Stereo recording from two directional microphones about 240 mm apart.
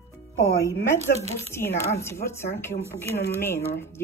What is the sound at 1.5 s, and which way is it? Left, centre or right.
Speech, centre.